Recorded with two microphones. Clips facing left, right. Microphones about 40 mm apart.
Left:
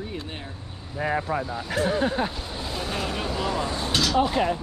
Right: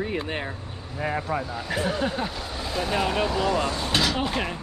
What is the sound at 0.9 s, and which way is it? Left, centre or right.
Speech, centre.